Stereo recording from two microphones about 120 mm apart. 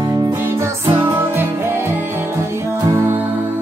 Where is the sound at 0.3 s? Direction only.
25° right (ahead or behind).